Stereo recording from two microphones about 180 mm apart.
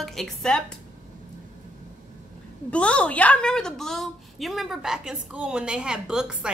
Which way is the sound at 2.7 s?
5° left (ahead or behind).